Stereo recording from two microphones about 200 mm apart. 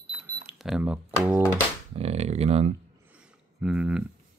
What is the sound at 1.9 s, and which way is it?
Speech, 30° right (ahead or behind).